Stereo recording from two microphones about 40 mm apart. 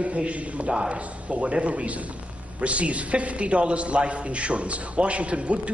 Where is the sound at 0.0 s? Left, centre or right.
Right.